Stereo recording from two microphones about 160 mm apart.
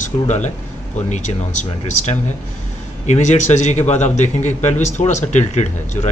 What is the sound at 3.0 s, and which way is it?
A man's voice, 45° left (ahead or behind).